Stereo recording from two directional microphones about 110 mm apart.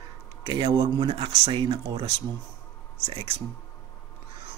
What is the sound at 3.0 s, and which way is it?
Speech, 70° right (ahead or behind).